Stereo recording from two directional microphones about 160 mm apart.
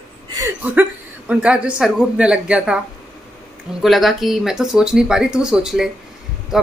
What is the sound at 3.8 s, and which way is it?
Speech, centre (ahead or behind).